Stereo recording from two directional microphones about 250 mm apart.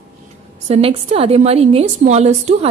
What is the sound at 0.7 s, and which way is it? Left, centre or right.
A woman's voice, right.